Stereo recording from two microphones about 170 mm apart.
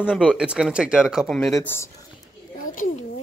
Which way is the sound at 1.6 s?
15° left (ahead or behind).